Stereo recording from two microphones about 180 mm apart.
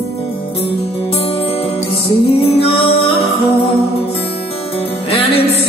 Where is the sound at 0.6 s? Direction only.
35° left (ahead or behind).